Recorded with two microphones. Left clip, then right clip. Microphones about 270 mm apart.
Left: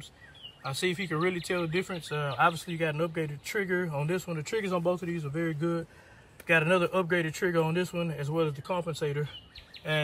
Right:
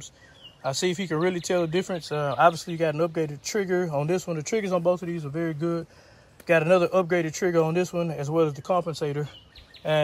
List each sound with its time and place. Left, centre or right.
0.6 s speech: centre